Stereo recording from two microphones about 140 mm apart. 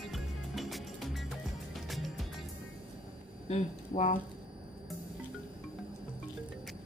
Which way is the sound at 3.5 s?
55° left (ahead or behind).